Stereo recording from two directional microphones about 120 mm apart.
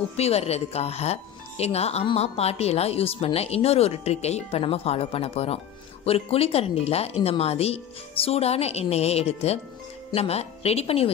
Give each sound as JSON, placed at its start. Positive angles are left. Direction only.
{"t": 0.2, "sound": "speech", "side_deg": 60}